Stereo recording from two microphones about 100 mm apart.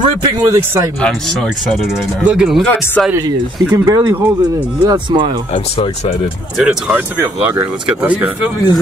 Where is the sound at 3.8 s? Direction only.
40° right (ahead or behind).